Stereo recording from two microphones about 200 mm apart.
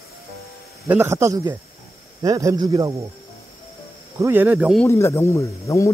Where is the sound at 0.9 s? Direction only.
10° right (ahead or behind).